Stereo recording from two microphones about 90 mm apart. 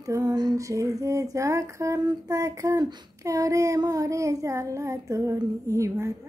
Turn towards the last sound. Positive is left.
turn(degrees=-35)  # may be behind; listen again after turning